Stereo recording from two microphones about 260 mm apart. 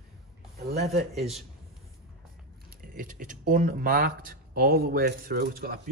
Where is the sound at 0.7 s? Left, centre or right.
Right.